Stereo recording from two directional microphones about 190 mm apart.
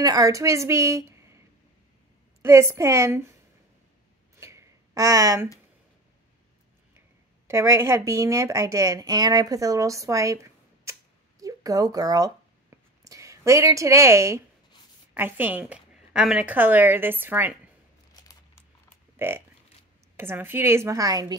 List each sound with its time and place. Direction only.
0.0 s a woman's voice: 20° right (ahead or behind)
2.4 s a woman's voice: 15° right (ahead or behind)
4.4 s a sound: 15° right (ahead or behind)
7.4 s a woman's voice: 15° right (ahead or behind)
18.1 s a sound: 20° left (ahead or behind)
19.1 s a woman's voice: 10° right (ahead or behind)